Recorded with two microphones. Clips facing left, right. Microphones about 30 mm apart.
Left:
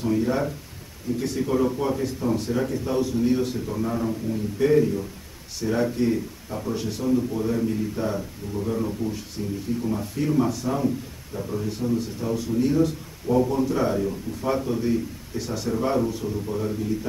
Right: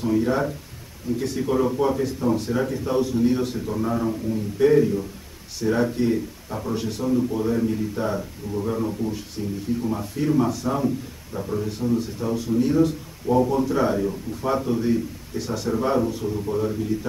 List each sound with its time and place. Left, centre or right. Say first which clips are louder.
0.0 s a man's voice: right 2 dB; centre
11.6 s a man's voice: right 1 dB; centre